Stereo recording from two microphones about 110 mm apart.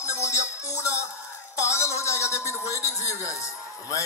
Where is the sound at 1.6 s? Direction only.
25° left (ahead or behind).